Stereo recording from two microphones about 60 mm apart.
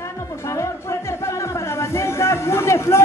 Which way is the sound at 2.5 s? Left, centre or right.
Left.